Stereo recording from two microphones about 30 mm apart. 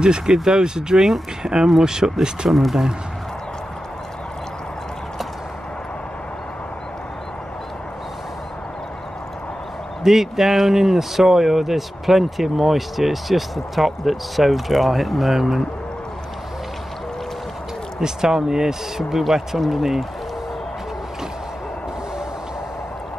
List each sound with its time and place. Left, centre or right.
0.0 s speech: right
2.4 s speech: right
10.0 s speech: centre
18.0 s speech: centre